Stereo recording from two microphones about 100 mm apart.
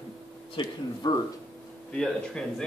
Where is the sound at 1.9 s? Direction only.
5° left (ahead or behind).